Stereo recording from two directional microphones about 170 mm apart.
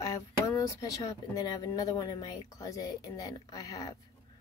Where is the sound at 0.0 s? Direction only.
20° left (ahead or behind).